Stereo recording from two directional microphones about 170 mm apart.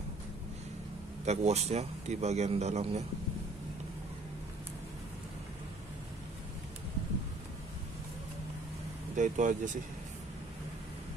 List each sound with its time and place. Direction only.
1.2 s speech: 40° right (ahead or behind)
9.1 s speech: 45° right (ahead or behind)